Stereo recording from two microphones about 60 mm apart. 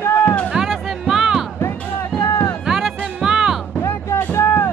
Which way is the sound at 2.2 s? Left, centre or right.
Left.